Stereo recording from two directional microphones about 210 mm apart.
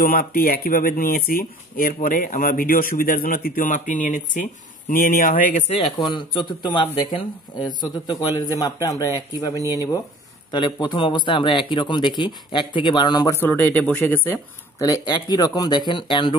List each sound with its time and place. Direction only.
0.0 s speech: 45° left (ahead or behind)
5.9 s speech: 20° left (ahead or behind)